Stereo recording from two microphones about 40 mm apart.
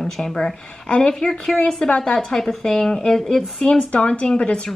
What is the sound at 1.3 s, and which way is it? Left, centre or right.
Speech, centre.